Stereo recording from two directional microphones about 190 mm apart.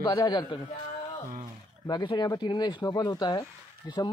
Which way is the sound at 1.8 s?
25° left (ahead or behind).